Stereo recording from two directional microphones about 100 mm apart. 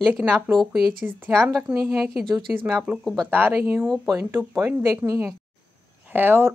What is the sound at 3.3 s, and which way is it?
Speech, 20° right (ahead or behind).